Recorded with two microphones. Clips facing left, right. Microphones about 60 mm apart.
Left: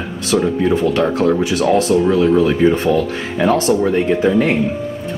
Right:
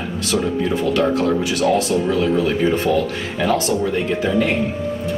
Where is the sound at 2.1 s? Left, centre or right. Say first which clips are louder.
Left 5 dB; left.